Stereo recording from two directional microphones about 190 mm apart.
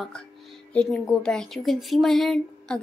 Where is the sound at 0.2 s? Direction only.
5° left (ahead or behind).